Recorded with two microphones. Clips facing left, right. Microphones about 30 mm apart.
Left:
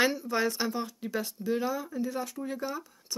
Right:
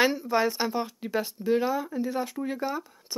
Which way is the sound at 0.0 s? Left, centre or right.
Centre.